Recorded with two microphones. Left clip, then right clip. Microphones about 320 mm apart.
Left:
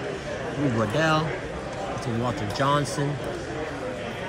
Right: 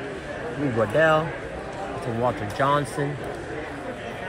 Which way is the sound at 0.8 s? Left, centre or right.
Centre.